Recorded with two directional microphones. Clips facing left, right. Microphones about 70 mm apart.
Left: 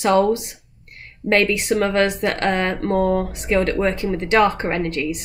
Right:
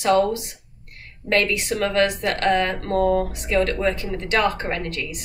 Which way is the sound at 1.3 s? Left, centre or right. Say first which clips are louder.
Left 4 dB; left.